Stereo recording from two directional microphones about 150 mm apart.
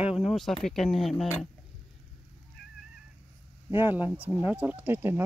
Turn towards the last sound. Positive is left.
turn(degrees=-15)  # may be behind; listen again after turning